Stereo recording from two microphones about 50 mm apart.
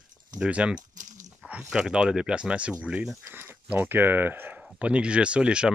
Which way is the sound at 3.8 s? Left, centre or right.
Right.